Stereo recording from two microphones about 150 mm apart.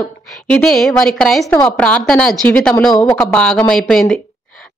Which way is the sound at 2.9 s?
25° left (ahead or behind).